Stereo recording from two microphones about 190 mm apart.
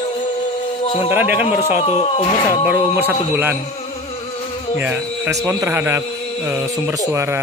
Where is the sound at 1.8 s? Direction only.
35° left (ahead or behind).